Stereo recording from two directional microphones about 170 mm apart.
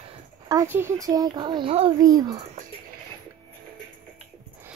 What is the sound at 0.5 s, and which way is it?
Speech, 15° right (ahead or behind).